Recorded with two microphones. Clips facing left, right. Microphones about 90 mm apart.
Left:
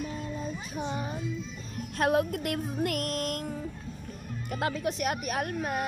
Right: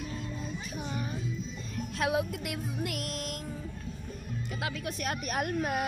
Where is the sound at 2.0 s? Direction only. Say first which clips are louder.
Left 4 dB; 50° left (ahead or behind).